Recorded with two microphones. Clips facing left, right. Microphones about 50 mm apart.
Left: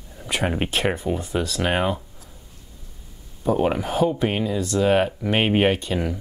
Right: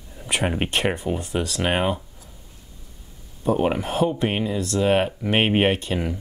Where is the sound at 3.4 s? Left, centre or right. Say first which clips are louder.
Even; centre.